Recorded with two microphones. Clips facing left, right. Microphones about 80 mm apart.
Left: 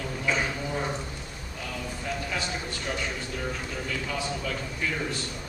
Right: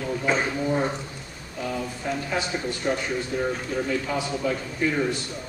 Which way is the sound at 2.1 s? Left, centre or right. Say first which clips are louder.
Right 5 dB; right.